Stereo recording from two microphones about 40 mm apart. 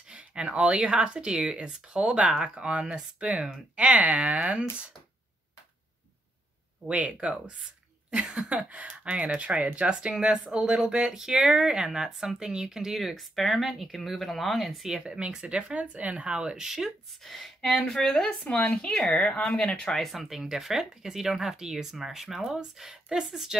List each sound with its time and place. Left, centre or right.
0.1 s speech: right
6.9 s speech: right
8.1 s a sound: right
9.0 s speech: right; by 14.9 s centre
14.9 s speech: right
16.3 s speech: centre
17.2 s speech: centre; by 19.4 s left
19.4 s speech: centre
20.0 s speech: centre